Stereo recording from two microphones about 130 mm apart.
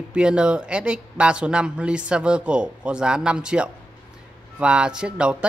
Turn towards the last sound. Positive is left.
turn(degrees=-10)  # may be behind; listen again after turning